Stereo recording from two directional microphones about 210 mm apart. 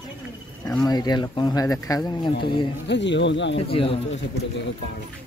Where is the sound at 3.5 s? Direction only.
25° left (ahead or behind).